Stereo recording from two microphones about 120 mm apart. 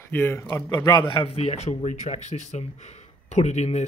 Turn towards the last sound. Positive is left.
turn(degrees=65)  # may be behind; listen again after turning